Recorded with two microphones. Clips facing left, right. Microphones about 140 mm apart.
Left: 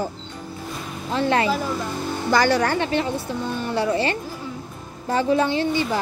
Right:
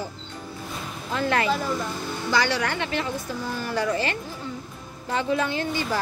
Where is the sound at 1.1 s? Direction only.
25° left (ahead or behind).